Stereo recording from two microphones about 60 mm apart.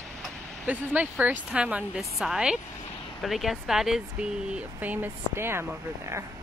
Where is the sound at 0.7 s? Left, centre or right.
Right.